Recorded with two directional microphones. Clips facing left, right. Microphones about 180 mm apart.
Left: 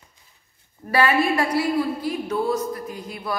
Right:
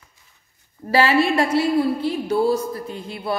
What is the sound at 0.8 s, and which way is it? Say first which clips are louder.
A woman's voice: right 2 dB; 25° right (ahead or behind).